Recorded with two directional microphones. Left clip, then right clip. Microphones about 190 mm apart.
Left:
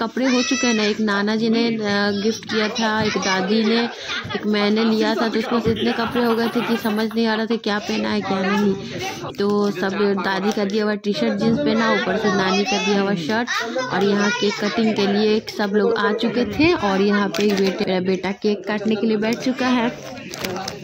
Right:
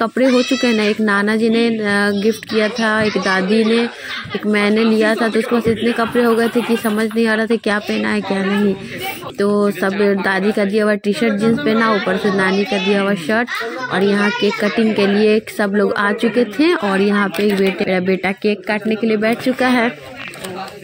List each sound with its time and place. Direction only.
0.2 s speech: 35° right (ahead or behind)
0.6 s speech: 10° right (ahead or behind)
9.4 s speech: 10° right (ahead or behind)